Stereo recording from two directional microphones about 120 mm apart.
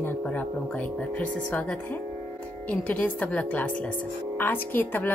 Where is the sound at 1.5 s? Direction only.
10° left (ahead or behind).